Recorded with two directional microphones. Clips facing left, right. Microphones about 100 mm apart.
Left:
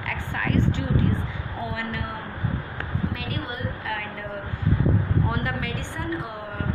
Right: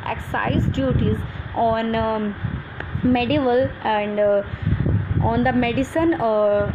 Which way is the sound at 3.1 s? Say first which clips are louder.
Right 15 dB; 90° right.